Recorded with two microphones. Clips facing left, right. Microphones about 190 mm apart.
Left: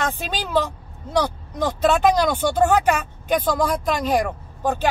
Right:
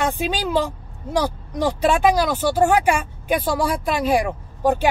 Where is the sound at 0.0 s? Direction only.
15° right (ahead or behind).